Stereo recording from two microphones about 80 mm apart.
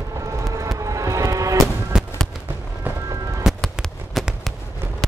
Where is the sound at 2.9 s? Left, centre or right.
Right.